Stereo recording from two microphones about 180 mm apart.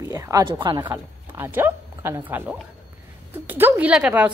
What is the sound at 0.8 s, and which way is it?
Speech, 15° right (ahead or behind).